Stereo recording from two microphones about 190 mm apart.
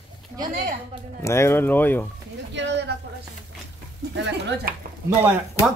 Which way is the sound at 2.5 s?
70° right (ahead or behind).